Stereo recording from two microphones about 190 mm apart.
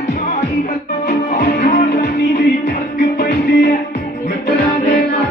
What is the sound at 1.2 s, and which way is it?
Music, 55° left (ahead or behind).